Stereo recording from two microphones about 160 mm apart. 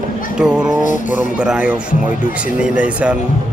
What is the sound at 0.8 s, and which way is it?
Speech, 55° left (ahead or behind).